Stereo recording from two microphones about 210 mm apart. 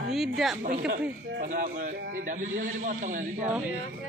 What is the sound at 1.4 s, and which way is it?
A man's voice, 40° right (ahead or behind).